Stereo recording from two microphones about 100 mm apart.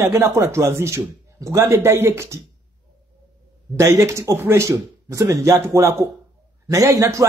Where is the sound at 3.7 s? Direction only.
30° right (ahead or behind).